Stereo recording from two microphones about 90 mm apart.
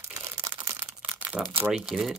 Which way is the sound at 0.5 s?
55° right (ahead or behind).